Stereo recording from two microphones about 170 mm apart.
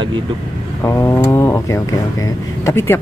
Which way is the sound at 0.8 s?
15° left (ahead or behind).